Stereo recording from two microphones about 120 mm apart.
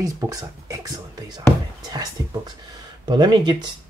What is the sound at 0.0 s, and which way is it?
Speech, 30° right (ahead or behind).